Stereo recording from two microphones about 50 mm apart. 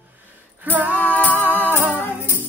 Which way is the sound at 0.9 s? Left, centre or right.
Left.